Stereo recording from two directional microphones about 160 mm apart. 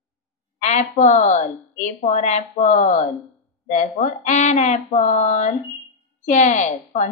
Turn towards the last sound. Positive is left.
turn(degrees=50)  # may be behind; listen again after turning